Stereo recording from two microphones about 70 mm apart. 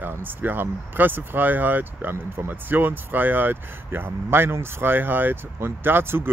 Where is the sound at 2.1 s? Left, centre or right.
Right.